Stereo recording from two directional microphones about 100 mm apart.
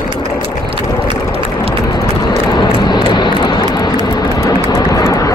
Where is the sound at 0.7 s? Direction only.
65° right (ahead or behind).